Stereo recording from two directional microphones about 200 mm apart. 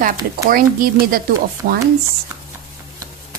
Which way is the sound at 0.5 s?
45° right (ahead or behind).